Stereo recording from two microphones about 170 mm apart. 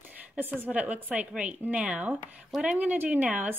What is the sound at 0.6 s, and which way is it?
Speech, 10° right (ahead or behind).